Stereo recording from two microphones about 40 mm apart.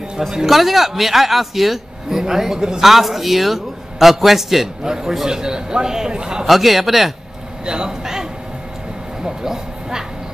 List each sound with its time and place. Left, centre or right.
0.5 s a man's voice: centre
2.8 s a man's voice: centre
6.4 s a man's voice: centre
7.6 s speech: right
9.2 s a sound: centre